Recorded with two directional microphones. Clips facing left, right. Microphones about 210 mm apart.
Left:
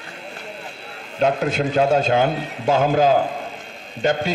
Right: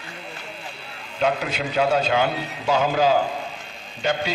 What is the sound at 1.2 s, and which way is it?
A man's voice, 45° left (ahead or behind).